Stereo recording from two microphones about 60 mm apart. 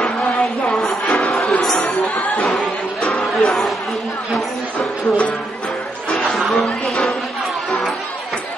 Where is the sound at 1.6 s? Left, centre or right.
Centre.